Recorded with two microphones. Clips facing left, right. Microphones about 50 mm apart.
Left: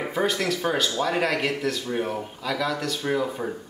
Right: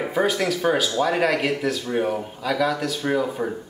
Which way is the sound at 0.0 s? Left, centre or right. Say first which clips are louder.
Right 3 dB; centre.